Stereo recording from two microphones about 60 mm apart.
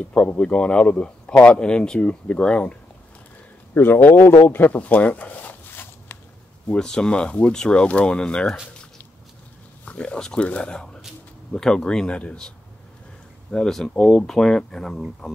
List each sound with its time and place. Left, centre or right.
0.4 s speech: centre
3.7 s a man's voice: left
4.5 s zipper: left
6.7 s speech: centre
9.8 s speech: left
13.5 s speech: centre